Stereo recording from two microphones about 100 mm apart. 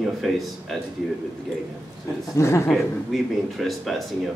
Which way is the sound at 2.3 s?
30° left (ahead or behind).